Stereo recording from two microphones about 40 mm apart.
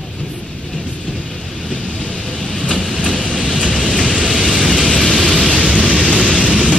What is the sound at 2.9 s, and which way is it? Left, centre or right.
Vehicle, right.